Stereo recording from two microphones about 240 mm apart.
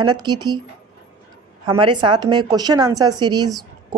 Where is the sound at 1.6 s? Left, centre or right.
Centre.